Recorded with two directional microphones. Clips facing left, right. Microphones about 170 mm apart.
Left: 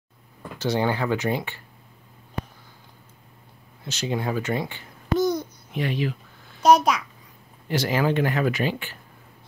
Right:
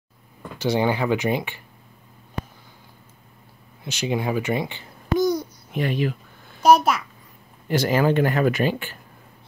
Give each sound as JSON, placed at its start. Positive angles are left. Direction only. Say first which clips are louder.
{"t": 0.6, "sound": "speech", "louder": "right 2 dB", "side_deg": -15}
{"t": 3.8, "sound": "babbling", "louder": "right 2 dB", "side_deg": -15}
{"t": 5.7, "sound": "speech", "louder": "right 3 dB", "side_deg": -50}
{"t": 6.6, "sound": "speech", "louder": "right 1 dB", "side_deg": -5}
{"t": 7.6, "sound": "speech", "louder": "right 3 dB", "side_deg": -50}